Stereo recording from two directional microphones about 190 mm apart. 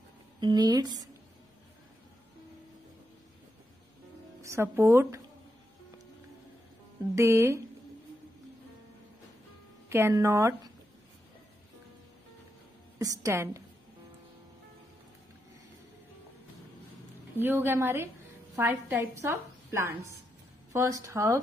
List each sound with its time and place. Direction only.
0.4 s a woman's voice: 20° right (ahead or behind)
4.4 s a woman's voice: 15° right (ahead or behind)
7.2 s a woman's voice: 15° right (ahead or behind)
9.8 s a woman's voice: 15° right (ahead or behind)
13.0 s a woman's voice: 15° right (ahead or behind)
17.4 s a woman's voice: 10° right (ahead or behind)